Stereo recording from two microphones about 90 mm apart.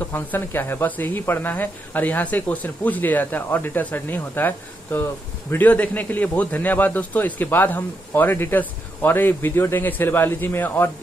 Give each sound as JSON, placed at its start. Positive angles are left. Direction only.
{"t": 0.1, "sound": "speech", "side_deg": 20}